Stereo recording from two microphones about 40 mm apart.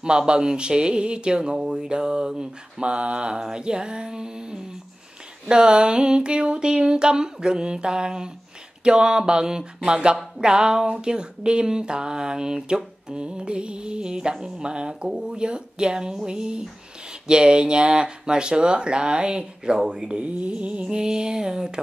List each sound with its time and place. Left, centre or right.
0.0 s speech: right